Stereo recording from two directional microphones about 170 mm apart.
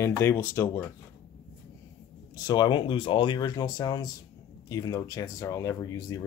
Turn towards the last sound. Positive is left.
turn(degrees=20)  # may be behind; listen again after turning